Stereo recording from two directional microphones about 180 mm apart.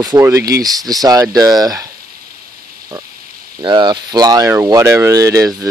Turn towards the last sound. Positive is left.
turn(degrees=-15)  # may be behind; listen again after turning